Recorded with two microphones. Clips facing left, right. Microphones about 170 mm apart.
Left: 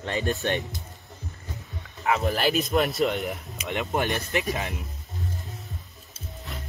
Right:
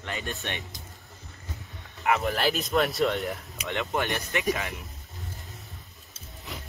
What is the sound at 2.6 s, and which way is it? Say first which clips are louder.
Speech: left 1 dB; centre (ahead or behind).